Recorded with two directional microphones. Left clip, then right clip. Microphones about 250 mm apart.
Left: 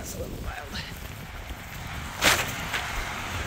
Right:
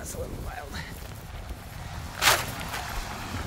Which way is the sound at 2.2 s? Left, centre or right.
Right.